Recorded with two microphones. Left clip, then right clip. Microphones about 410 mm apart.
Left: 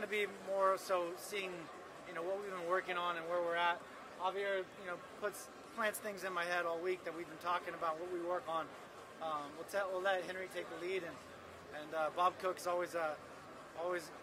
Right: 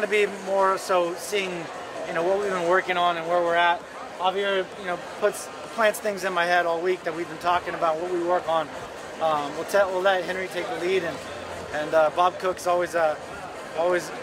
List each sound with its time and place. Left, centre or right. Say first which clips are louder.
0.1 s speech: right 16 dB; left